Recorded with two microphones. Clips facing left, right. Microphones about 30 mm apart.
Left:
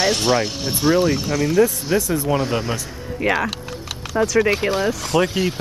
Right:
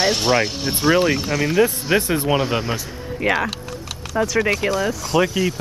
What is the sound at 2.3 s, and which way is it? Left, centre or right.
Speech, centre.